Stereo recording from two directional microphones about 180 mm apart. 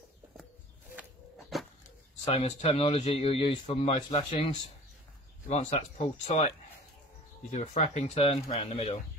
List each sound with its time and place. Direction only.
1.5 s a sound: centre (ahead or behind)
2.2 s speech: 35° left (ahead or behind)
5.5 s speech: 40° left (ahead or behind)
7.5 s speech: 40° left (ahead or behind)